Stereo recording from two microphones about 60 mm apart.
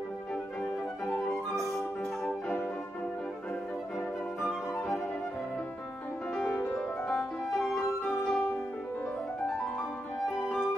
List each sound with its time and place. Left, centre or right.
1.0 s music: left
6.3 s music: centre
7.2 s music: centre